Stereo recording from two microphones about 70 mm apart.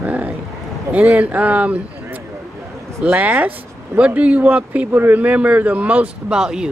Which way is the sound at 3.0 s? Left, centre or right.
Right.